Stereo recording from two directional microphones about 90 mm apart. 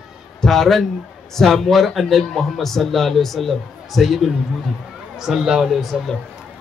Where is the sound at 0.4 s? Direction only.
5° left (ahead or behind).